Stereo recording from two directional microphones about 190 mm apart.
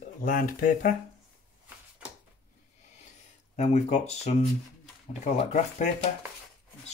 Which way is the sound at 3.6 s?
35° left (ahead or behind).